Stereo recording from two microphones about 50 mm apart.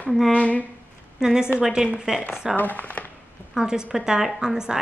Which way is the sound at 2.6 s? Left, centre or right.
Left.